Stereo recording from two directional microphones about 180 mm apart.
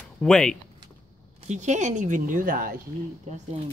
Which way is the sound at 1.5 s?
40° right (ahead or behind).